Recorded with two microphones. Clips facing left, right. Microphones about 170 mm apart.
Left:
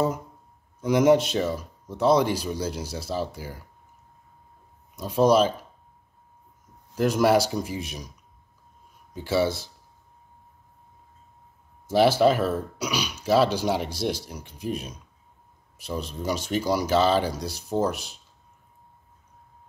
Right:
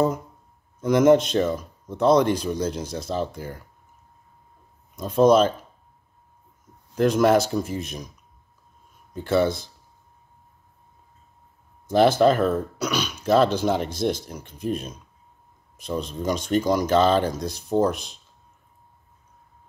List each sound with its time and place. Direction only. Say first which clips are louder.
0.7 s speech: right 2 dB; 10° left (ahead or behind)
4.9 s speech: right 3 dB; 10° left (ahead or behind)
7.0 s speech: right 2 dB; 10° left (ahead or behind)
9.1 s speech: right 3 dB; 10° left (ahead or behind)
11.9 s speech: right 2 dB; 5° left (ahead or behind)
15.8 s speech: right 3 dB; 5° left (ahead or behind)
17.4 s speech: right 3 dB; 50° right (ahead or behind)
17.7 s speech: right 4 dB; 5° left (ahead or behind)